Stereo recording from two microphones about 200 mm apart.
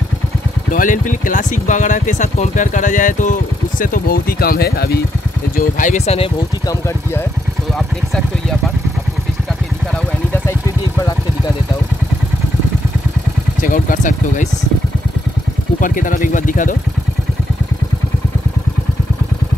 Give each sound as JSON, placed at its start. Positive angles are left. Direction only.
{"t": 0.7, "sound": "speech", "side_deg": 40}
{"t": 5.6, "sound": "speech", "side_deg": 40}
{"t": 13.6, "sound": "speech", "side_deg": 40}
{"t": 15.8, "sound": "speech", "side_deg": 40}